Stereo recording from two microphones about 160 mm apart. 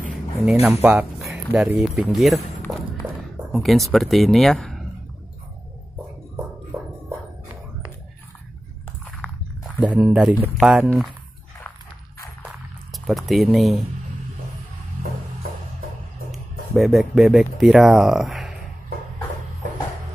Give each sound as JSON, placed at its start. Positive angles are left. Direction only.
{"t": 0.5, "sound": "speech", "side_deg": -10}
{"t": 3.5, "sound": "speech", "side_deg": 0}
{"t": 9.2, "sound": "a sound", "side_deg": 10}
{"t": 9.9, "sound": "speech", "side_deg": -5}
{"t": 12.4, "sound": "a sound", "side_deg": 0}
{"t": 16.3, "sound": "speech", "side_deg": 0}